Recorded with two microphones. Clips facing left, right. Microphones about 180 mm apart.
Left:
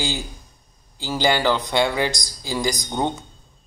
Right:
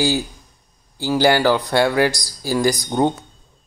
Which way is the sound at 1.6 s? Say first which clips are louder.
Right 4 dB; 20° left (ahead or behind).